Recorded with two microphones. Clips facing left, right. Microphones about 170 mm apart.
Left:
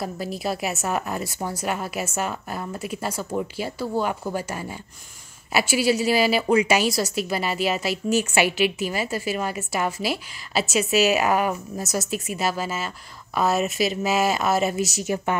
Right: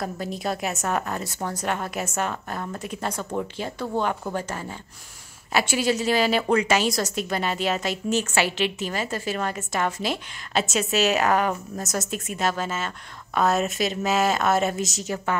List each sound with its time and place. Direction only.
0.0 s a woman's voice: 5° left (ahead or behind)